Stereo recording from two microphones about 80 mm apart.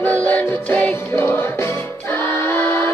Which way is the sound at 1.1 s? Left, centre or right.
Left.